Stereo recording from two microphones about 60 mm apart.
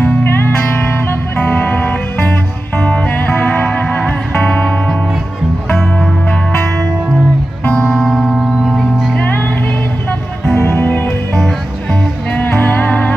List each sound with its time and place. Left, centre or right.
0.0 s music: left
3.2 s music: left
4.5 s music: centre
7.6 s music: left
7.9 s music: centre
8.6 s music: centre
9.1 s music: left
10.5 s music: left
12.5 s music: left